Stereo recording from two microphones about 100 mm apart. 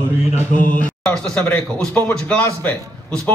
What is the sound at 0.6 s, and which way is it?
Speech, 10° left (ahead or behind).